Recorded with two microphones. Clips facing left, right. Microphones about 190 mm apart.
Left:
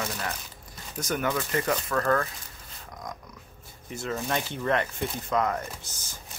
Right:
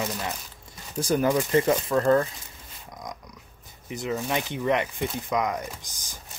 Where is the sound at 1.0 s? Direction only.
30° right (ahead or behind).